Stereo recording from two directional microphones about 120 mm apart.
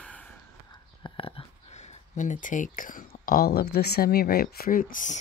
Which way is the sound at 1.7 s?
70° left (ahead or behind).